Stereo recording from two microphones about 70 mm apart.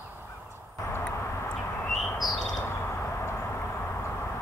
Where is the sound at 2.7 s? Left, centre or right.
Left.